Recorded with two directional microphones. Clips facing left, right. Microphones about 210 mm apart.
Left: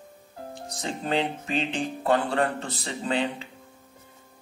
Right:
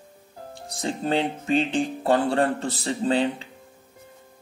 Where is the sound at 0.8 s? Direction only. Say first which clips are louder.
Right 3 dB; 35° right (ahead or behind).